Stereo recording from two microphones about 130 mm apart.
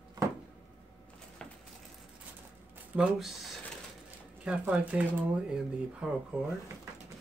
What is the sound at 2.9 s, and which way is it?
Speech, 10° right (ahead or behind).